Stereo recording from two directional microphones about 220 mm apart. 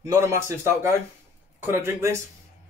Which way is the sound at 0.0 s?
15° right (ahead or behind).